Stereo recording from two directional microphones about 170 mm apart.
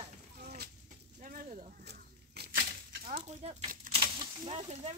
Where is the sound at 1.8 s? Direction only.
70° right (ahead or behind).